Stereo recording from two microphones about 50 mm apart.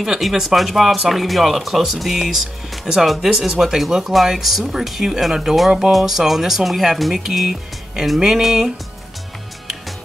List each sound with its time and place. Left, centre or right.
0.0 s speech: centre